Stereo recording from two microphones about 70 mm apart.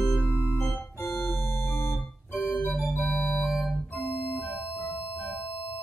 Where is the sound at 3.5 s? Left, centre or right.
Centre.